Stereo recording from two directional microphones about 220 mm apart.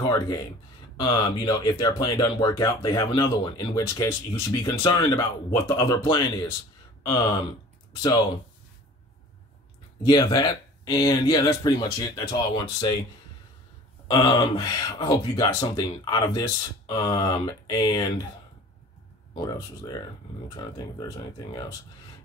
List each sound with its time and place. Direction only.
0.1 s speech: 15° left (ahead or behind)
10.0 s speech: 15° left (ahead or behind)
14.0 s speech: 20° left (ahead or behind)
19.3 s speech: 15° left (ahead or behind)